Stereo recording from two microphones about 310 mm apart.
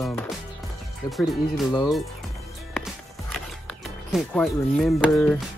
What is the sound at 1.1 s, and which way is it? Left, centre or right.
Speech, centre.